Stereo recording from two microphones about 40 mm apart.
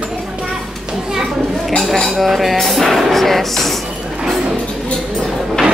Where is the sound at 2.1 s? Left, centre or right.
Centre.